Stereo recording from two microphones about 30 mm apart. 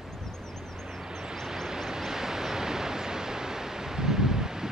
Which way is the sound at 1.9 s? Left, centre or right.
Centre.